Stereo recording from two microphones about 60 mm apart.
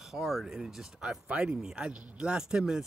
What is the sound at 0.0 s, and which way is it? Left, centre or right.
Speech, centre.